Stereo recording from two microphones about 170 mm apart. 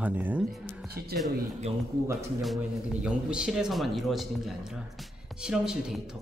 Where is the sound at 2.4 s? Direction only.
5° right (ahead or behind).